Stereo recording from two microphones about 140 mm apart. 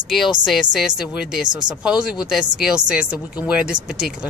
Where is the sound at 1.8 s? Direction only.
5° right (ahead or behind).